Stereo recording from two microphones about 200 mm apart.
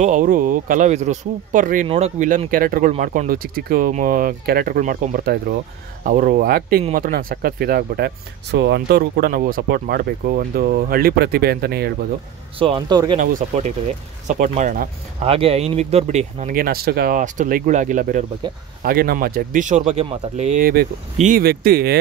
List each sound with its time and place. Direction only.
0.0 s speech: 40° right (ahead or behind)
12.5 s speech: 25° right (ahead or behind)
13.2 s speech: 40° right (ahead or behind)
15.2 s speech: 30° right (ahead or behind)
16.5 s speech: 50° right (ahead or behind)
18.4 s speech: 20° right (ahead or behind)
18.8 s speech: 50° right (ahead or behind)
20.6 s speech: 45° right (ahead or behind)